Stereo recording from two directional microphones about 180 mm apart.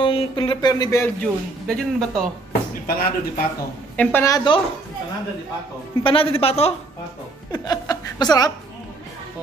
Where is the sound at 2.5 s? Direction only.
55° left (ahead or behind).